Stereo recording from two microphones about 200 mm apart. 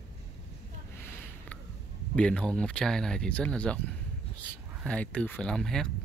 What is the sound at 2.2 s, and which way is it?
Speech, 5° left (ahead or behind).